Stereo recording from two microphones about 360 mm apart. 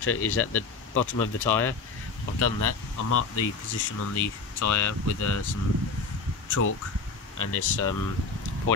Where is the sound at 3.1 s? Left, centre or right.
Left.